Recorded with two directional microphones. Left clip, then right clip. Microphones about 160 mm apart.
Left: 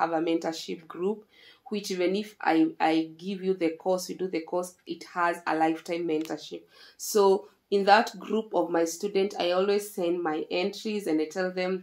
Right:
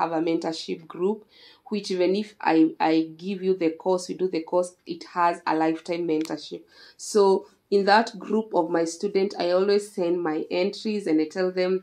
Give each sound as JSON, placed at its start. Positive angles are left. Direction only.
{"t": 0.0, "sound": "speech", "side_deg": -35}